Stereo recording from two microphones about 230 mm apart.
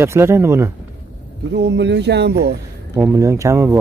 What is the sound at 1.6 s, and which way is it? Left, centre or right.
Speech, right.